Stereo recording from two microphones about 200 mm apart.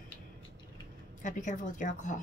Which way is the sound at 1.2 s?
40° left (ahead or behind).